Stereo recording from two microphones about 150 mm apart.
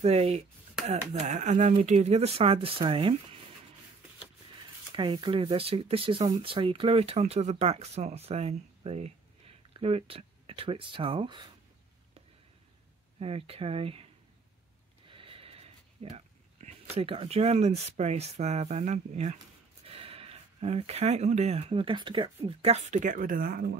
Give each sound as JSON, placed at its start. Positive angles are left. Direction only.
{"t": 0.0, "sound": "speech", "side_deg": -45}
{"t": 4.9, "sound": "speech", "side_deg": -30}
{"t": 13.2, "sound": "speech", "side_deg": -40}
{"t": 15.0, "sound": "a sound", "side_deg": -35}
{"t": 16.6, "sound": "speech", "side_deg": -40}